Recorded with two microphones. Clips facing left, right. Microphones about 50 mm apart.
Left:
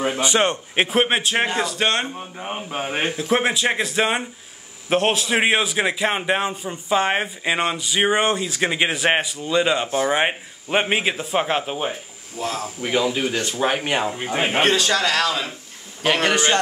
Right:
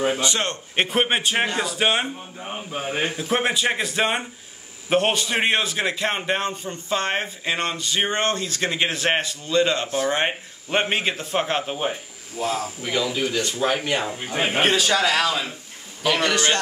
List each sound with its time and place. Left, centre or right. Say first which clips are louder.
0.2 s speech: left 5 dB; left
0.7 s a man's voice: left 1 dB; centre
2.3 s speech: left 3 dB; left
3.2 s a man's voice: left 4 dB; centre
12.6 s speech: left 3 dB; left
14.6 s a man's voice: even; centre
16.0 s speech: left 2 dB; left